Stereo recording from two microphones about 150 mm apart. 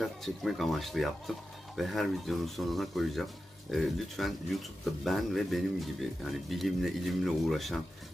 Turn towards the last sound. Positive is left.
turn(degrees=0)  # may be behind; listen again after turning